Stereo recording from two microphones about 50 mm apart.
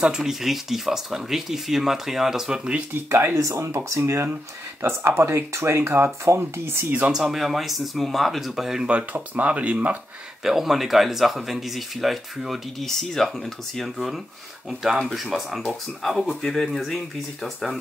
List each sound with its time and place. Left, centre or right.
0.2 s speech: centre
2.9 s speech: right
3.3 s speech: right
4.8 s speech: right
7.1 s speech: centre
8.8 s speech: right
10.4 s speech: centre